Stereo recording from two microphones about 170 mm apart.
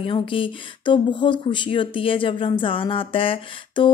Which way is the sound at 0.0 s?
30° left (ahead or behind).